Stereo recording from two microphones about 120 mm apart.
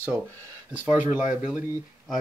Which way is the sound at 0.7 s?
15° right (ahead or behind).